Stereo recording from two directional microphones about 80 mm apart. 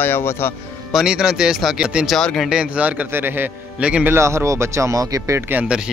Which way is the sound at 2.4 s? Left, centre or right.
Centre.